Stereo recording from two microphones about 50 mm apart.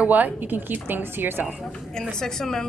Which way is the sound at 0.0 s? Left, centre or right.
Right.